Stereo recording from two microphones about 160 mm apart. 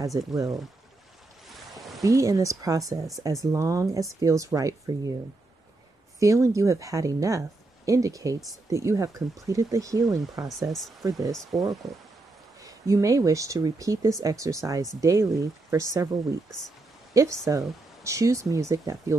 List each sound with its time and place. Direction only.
0.0 s speech: 20° right (ahead or behind)
1.5 s a sound: centre (ahead or behind)
2.0 s speech: 20° right (ahead or behind)
6.1 s speech: 20° right (ahead or behind)